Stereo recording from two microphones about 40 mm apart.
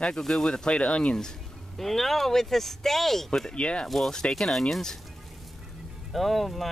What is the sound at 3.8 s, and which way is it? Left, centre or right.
Speech, centre.